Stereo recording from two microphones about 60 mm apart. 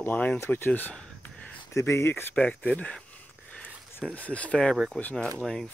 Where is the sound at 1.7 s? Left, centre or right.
Left.